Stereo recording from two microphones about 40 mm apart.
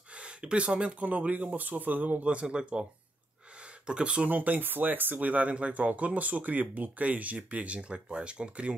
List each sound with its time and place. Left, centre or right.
0.1 s speech: right
2.2 s speech: right
4.3 s speech: right